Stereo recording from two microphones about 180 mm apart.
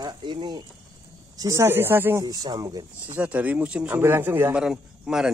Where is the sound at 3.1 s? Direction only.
10° right (ahead or behind).